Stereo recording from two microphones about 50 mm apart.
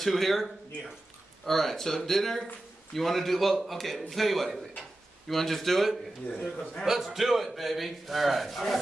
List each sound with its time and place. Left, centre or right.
0.0 s a man's voice: centre
6.5 s a man's voice: left
6.8 s a man's voice: centre